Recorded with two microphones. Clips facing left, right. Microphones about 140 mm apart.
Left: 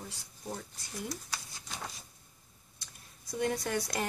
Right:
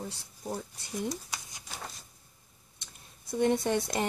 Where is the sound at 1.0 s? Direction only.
20° right (ahead or behind).